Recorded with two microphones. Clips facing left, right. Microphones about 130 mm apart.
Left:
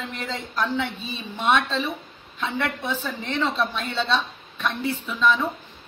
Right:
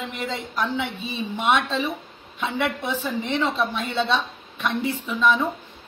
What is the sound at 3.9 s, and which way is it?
Speech, 20° right (ahead or behind).